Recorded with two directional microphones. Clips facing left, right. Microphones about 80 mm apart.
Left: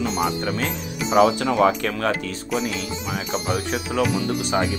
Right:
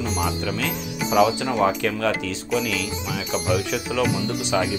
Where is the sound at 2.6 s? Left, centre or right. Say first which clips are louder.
Even; left.